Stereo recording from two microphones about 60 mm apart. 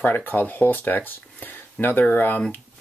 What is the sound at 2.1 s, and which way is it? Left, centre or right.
Speech, left.